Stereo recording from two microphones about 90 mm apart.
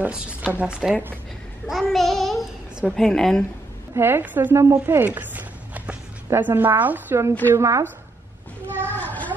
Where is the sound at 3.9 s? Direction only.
25° right (ahead or behind).